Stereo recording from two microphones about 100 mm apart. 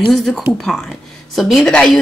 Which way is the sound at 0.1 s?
Centre (ahead or behind).